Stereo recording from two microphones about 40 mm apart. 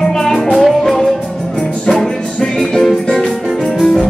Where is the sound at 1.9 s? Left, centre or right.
Centre.